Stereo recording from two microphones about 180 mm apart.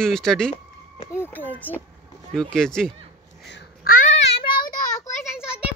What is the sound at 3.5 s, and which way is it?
Babbling, 70° left (ahead or behind).